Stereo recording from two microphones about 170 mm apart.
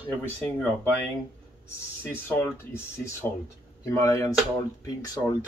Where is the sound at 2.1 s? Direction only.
15° left (ahead or behind).